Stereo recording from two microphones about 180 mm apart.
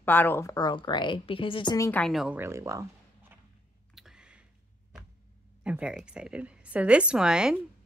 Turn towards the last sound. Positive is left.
turn(degrees=-5)  # may be behind; listen again after turning